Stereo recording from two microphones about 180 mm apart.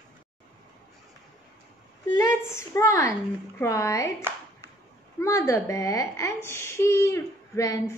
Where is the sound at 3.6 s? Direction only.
15° left (ahead or behind).